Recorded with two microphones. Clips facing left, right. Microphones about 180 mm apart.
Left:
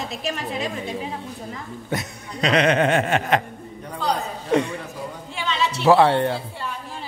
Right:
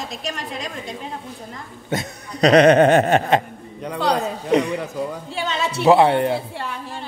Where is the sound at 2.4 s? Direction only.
40° right (ahead or behind).